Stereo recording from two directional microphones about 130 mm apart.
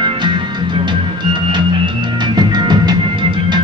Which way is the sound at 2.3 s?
35° right (ahead or behind).